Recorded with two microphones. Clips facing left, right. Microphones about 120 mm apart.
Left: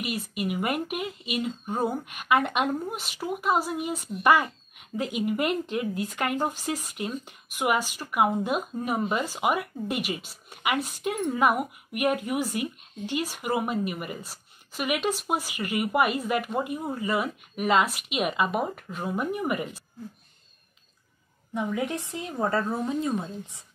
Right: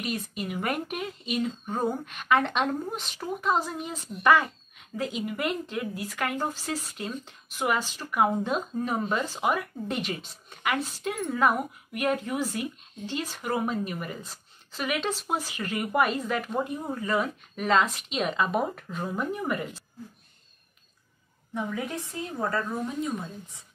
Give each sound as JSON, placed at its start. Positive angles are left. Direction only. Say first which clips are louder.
{"t": 0.0, "sound": "speech", "louder": "left 2 dB", "side_deg": 10}
{"t": 21.6, "sound": "speech", "louder": "left 6 dB", "side_deg": 20}